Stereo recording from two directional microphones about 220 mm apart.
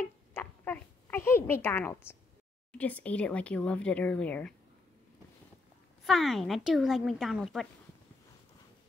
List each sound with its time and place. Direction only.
0.3 s a sound: 10° left (ahead or behind)
2.8 s speech: 5° left (ahead or behind)
6.0 s speech: centre (ahead or behind)